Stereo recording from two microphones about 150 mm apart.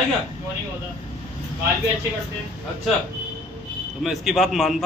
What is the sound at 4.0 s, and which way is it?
Speech, centre (ahead or behind).